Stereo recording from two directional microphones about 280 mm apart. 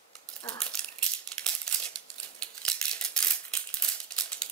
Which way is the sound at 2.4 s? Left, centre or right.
Centre.